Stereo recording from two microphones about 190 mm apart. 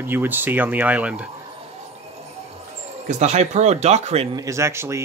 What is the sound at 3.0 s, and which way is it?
Speech, 35° right (ahead or behind).